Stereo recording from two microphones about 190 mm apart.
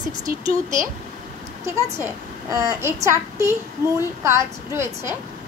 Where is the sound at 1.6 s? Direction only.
15° right (ahead or behind).